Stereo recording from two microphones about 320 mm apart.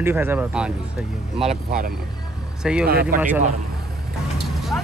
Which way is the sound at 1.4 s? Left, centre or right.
Right.